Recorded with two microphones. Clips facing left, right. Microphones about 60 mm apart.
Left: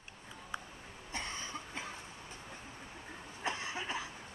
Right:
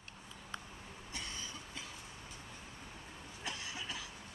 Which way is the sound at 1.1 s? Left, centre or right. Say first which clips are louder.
Left 5 dB; left.